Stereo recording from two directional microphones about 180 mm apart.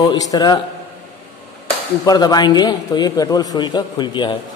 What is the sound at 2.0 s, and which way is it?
A man's voice, 20° left (ahead or behind).